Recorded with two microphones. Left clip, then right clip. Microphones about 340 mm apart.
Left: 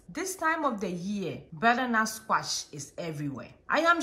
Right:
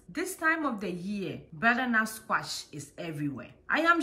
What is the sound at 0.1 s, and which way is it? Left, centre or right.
A woman's voice, centre.